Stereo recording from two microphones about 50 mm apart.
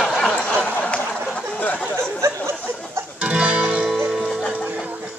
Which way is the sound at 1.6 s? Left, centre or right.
Left.